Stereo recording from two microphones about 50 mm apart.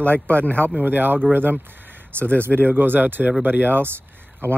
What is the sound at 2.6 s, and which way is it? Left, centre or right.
Speech, right.